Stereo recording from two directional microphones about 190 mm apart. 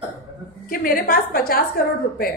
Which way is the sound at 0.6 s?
50° left (ahead or behind).